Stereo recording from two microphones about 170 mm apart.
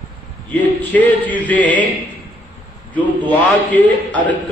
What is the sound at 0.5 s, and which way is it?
A man's voice, 10° left (ahead or behind).